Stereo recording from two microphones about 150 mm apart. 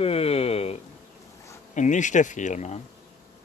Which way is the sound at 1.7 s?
55° left (ahead or behind).